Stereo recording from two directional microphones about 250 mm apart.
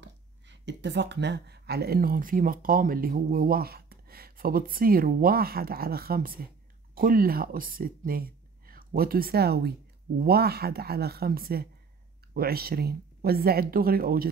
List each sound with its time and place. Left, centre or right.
0.0 s speech: right